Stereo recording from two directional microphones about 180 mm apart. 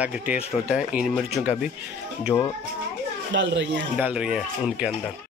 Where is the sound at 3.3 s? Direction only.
80° right.